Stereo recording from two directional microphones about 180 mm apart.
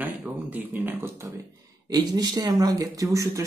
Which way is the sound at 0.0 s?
10° right (ahead or behind).